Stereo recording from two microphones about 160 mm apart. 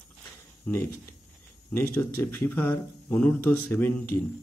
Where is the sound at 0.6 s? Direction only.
15° left (ahead or behind).